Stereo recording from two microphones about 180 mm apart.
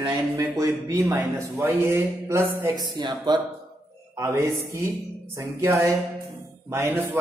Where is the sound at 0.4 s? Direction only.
15° right (ahead or behind).